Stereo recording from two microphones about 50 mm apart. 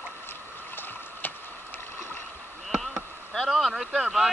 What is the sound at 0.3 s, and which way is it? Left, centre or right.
Boat, left.